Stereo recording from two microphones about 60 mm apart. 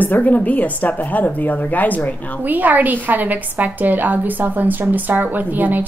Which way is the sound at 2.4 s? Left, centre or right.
Right.